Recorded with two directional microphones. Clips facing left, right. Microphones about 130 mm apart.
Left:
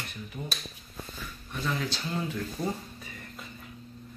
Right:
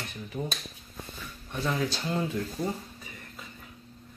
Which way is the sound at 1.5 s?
20° right (ahead or behind).